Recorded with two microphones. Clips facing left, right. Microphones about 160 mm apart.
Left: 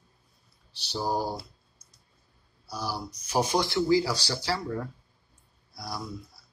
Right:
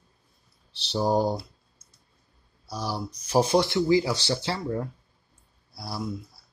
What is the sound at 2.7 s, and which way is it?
A man's voice, 30° right (ahead or behind).